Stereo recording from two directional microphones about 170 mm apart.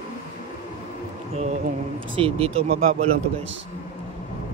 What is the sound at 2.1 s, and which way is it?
Speech, 35° right (ahead or behind).